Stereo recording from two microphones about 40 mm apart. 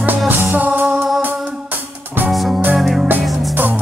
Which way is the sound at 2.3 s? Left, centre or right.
Centre.